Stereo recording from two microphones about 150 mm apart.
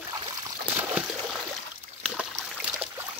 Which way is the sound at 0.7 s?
5° right (ahead or behind).